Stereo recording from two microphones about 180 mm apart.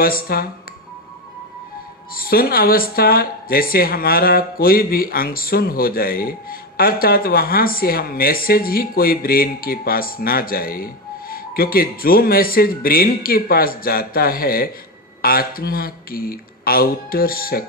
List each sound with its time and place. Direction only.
0.0 s a woman's voice: 55° left (ahead or behind)
2.1 s a woman's voice: 55° left (ahead or behind)